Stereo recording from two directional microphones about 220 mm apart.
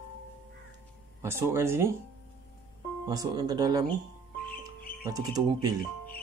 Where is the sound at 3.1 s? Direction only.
15° right (ahead or behind).